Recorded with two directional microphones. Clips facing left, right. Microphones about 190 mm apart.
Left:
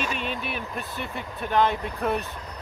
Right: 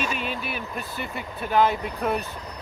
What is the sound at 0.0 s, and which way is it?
Speech, 5° right (ahead or behind).